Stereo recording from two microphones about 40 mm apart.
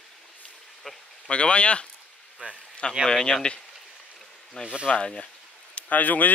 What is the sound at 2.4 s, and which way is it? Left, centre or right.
Speech, right.